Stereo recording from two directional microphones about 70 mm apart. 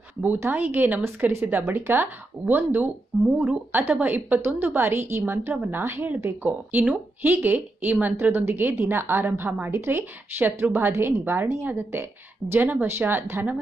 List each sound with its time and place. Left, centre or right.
0.2 s speech: right